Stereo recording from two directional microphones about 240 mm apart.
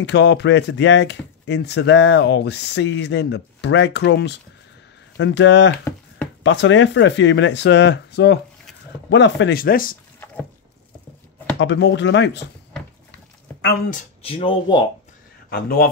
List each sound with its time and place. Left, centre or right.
0.0 s speech: left
11.6 s speech: left
13.1 s a sound: left
14.2 s speech: left
15.5 s speech: left